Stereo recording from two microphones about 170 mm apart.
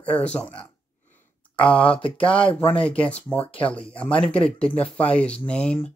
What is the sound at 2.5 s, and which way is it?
Speech, 5° left (ahead or behind).